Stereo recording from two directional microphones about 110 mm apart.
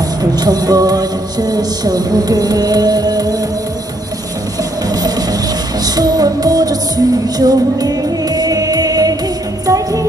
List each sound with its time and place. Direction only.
0.2 s music: 35° right (ahead or behind)
4.8 s music: 35° right (ahead or behind)